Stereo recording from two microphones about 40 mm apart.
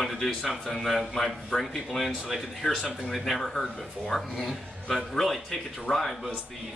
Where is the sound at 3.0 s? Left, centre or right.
Centre.